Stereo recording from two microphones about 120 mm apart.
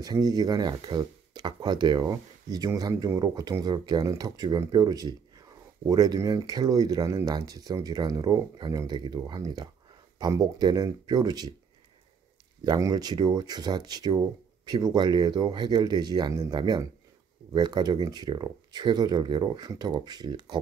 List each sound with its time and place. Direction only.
0.0 s speech: 35° right (ahead or behind)
12.6 s speech: 30° right (ahead or behind)